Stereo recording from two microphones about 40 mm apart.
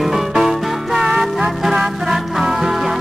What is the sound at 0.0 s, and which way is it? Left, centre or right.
Music, centre.